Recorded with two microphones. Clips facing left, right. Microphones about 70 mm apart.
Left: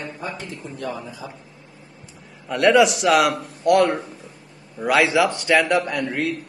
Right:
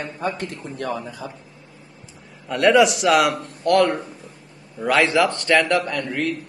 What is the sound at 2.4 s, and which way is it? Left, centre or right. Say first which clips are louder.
A man's voice: even; centre.